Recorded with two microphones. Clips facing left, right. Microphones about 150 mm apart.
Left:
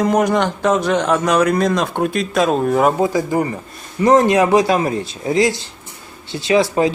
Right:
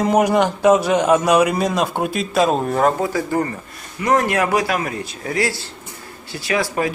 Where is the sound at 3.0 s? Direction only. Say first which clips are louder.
Left 3 dB; 15° left (ahead or behind).